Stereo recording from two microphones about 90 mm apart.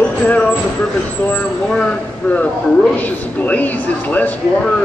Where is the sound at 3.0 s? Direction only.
20° left (ahead or behind).